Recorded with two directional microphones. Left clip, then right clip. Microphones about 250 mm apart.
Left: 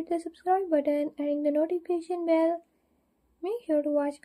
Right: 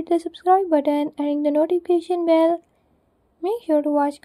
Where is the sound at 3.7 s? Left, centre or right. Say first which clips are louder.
Right 7 dB; right.